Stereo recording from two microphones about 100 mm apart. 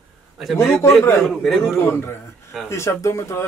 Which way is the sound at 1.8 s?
25° left (ahead or behind).